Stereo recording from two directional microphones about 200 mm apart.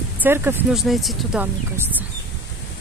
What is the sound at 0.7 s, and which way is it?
Speech, centre (ahead or behind).